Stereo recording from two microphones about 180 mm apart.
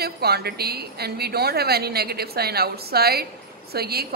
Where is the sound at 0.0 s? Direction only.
60° right (ahead or behind).